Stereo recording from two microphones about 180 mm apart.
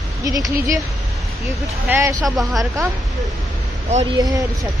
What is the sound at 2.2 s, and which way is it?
Speech, centre (ahead or behind).